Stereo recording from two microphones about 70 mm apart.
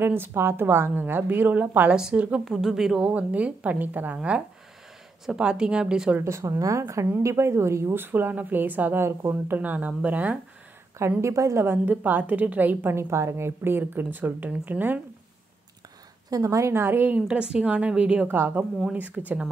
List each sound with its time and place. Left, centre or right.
0.0 s a woman's voice: right
1.9 s a woman's voice: centre
3.0 s speech: right
5.2 s a woman's voice: centre
6.2 s a woman's voice: right
9.6 s speech: right
11.0 s speech: right
11.6 s speech: right
12.9 s speech: right
16.3 s a woman's voice: right
17.1 s a woman's voice: centre
18.2 s speech: right